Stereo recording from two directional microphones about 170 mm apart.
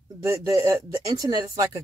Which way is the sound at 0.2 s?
20° right (ahead or behind).